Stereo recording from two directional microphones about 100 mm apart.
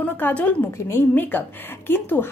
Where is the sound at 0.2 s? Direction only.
15° left (ahead or behind).